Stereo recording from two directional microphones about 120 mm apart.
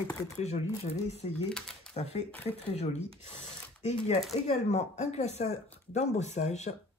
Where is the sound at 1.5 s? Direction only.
5° left (ahead or behind).